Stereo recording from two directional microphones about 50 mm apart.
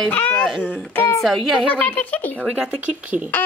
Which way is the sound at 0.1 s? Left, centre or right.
Left.